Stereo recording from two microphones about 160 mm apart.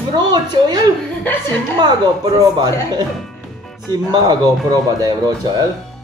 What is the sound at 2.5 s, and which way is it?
Speech, 25° right (ahead or behind).